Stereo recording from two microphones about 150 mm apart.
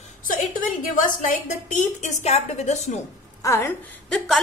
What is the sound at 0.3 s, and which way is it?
A woman's voice, 65° left (ahead or behind).